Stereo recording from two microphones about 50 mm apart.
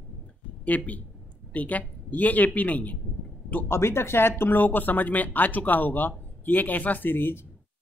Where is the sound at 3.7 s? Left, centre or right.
Left.